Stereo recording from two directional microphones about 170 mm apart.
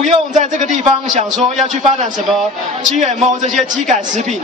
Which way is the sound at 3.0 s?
45° right (ahead or behind).